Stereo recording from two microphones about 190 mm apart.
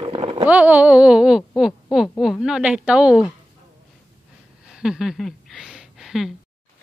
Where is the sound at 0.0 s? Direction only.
30° right (ahead or behind).